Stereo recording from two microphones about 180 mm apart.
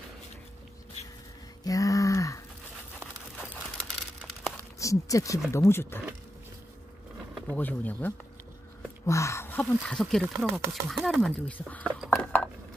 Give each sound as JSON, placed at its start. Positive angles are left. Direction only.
{"t": 1.6, "sound": "a sound", "side_deg": 20}
{"t": 3.6, "sound": "crumpling", "side_deg": 5}
{"t": 4.7, "sound": "speech", "side_deg": 20}
{"t": 7.3, "sound": "speech", "side_deg": 10}